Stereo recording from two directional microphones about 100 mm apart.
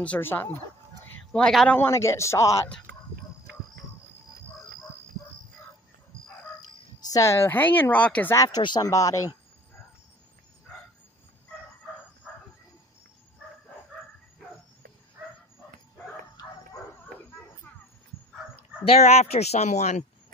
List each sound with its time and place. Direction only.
0.0 s speech: 15° left (ahead or behind)
1.3 s a man's voice: 5° left (ahead or behind)
1.9 s speech: 30° left (ahead or behind)
7.1 s speech: 30° left (ahead or behind); by 8.4 s 15° left (ahead or behind)
8.6 s speech: 45° left (ahead or behind)
8.9 s speech: 35° left (ahead or behind)
18.9 s speech: 90° left